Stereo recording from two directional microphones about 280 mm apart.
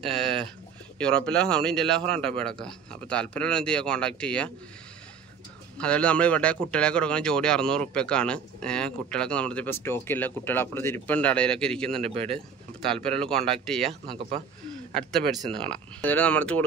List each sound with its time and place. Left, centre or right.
0.0 s speech: centre
5.8 s speech: centre
12.0 s speech: right
12.8 s speech: centre